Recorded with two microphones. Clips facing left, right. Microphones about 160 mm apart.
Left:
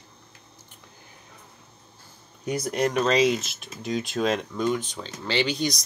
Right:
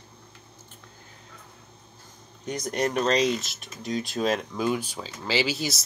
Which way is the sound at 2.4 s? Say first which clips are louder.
Left 2 dB; 10° left (ahead or behind).